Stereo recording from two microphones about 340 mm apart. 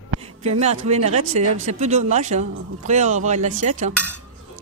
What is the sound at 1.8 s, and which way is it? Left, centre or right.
Speech, centre.